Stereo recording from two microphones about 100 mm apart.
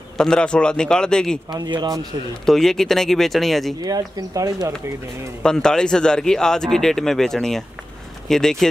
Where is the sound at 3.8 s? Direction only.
40° right (ahead or behind).